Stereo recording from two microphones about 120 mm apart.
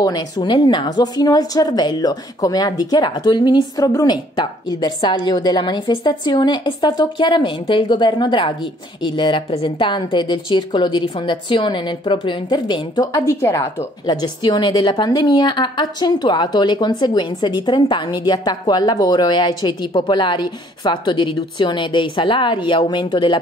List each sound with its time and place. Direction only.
0.0 s a woman's voice: 35° left (ahead or behind)
13.0 s a woman's voice: 25° left (ahead or behind)
14.0 s a woman's voice: 35° left (ahead or behind)